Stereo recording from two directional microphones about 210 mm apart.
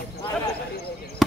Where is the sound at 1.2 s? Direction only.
Centre (ahead or behind).